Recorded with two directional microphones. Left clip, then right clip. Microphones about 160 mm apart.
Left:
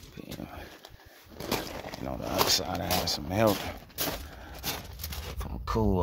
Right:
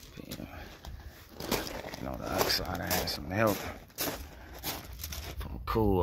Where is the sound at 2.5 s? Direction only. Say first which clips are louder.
Left 4 dB; 25° left (ahead or behind).